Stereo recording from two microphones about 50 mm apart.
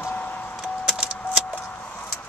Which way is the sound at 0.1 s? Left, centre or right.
Left.